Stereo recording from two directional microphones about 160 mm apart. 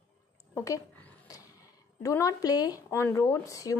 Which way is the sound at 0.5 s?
20° left (ahead or behind).